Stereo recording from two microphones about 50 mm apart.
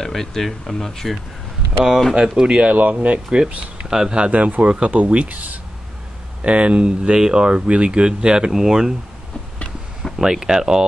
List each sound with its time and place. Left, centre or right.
0.0 s speech: centre
2.1 s speech: centre
4.3 s speech: right; by 8.9 s centre
10.1 s speech: centre